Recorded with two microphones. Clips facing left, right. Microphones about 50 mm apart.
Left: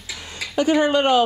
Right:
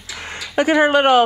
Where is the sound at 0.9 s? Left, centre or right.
Right.